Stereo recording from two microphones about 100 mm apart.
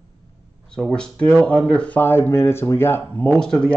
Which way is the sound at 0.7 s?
10° left (ahead or behind).